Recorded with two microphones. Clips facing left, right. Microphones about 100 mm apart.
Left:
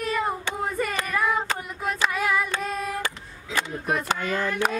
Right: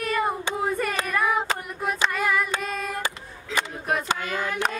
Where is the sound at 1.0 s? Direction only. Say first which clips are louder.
Right 1 dB; 5° right (ahead or behind).